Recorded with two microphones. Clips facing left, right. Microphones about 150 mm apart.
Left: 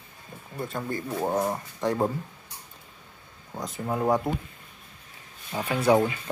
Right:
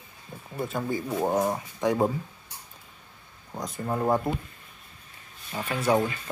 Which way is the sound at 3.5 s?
Centre (ahead or behind).